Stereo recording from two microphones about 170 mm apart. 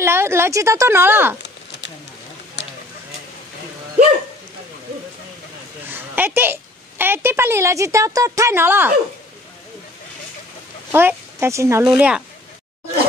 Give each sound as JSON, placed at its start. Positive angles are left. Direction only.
{"t": 0.0, "sound": "speech", "side_deg": -15}
{"t": 2.6, "sound": "a sound", "side_deg": 90}
{"t": 5.9, "sound": "a woman's voice", "side_deg": -10}
{"t": 10.9, "sound": "speech", "side_deg": -15}
{"t": 11.9, "sound": "speech", "side_deg": -5}